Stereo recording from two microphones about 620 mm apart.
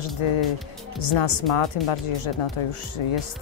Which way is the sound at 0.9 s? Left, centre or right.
Left.